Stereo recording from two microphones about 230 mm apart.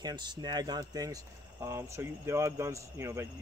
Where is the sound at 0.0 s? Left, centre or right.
Centre.